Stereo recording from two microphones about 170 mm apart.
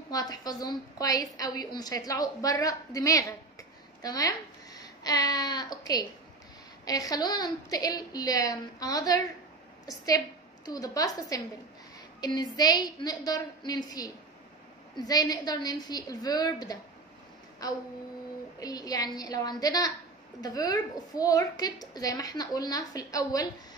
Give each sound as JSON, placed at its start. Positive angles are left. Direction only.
{"t": 0.1, "sound": "a woman's voice", "side_deg": 20}